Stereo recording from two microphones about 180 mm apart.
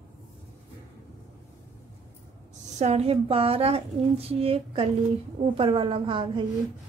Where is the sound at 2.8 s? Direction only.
35° right (ahead or behind).